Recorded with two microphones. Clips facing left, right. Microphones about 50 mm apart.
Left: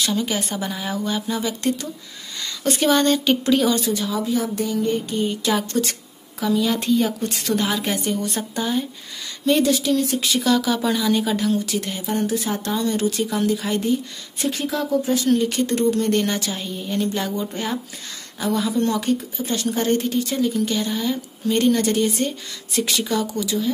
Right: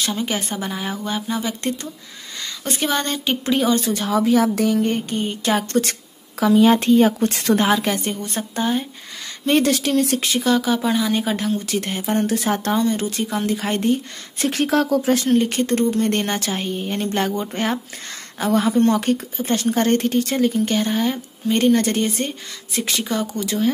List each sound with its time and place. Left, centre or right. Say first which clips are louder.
0.0 s a woman's voice: left 1 dB; centre
3.9 s a woman's voice: right 5 dB; right
4.7 s speech: right 1 dB; right
5.2 s speech: even; right
7.7 s a woman's voice: right 3 dB; centre
9.6 s a woman's voice: right 3 dB; right
10.2 s speech: right 1 dB; right
12.7 s speech: right 1 dB; right
13.5 s speech: right 1 dB; right
14.4 s a woman's voice: right 5 dB; right
15.2 s speech: right 1 dB; right
21.5 s a woman's voice: right 1 dB; right
23.4 s speech: right 3 dB; right